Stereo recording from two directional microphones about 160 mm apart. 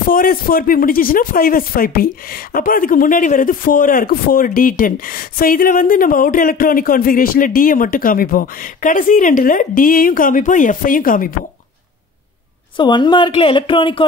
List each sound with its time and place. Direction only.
0.1 s speech: 65° left (ahead or behind)
12.7 s a woman's voice: 30° left (ahead or behind)